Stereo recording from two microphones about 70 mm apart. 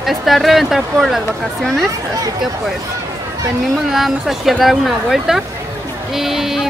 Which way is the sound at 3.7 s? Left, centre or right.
Centre.